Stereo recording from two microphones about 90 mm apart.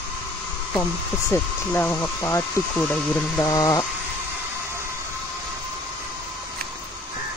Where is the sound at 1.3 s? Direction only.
25° left (ahead or behind).